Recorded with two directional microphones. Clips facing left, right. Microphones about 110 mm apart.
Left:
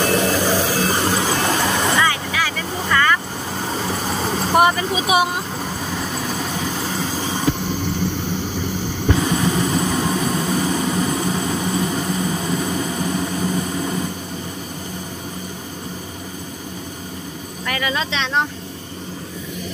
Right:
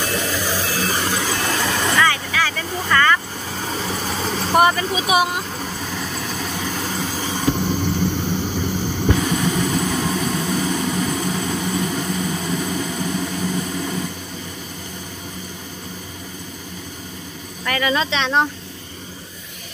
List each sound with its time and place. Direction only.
0.0 s a sound: 45° left (ahead or behind)
0.8 s vehicle: 25° left (ahead or behind); by 7.2 s 5° left (ahead or behind)
9.6 s vehicle: 5° left (ahead or behind)
13.1 s vehicle: 25° left (ahead or behind)
17.6 s speech: 5° left (ahead or behind)